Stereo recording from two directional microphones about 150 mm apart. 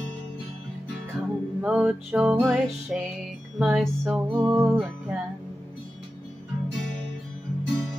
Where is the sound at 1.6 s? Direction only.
10° right (ahead or behind).